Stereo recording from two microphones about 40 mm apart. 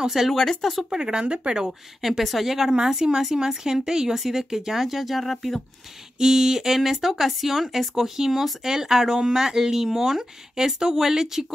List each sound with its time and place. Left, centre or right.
0.0 s speech: centre
0.3 s speech: centre
0.8 s speech: centre
1.7 s speech: centre
6.1 s speech: centre